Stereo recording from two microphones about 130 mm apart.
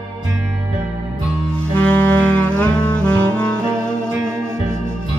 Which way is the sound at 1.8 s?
10° left (ahead or behind).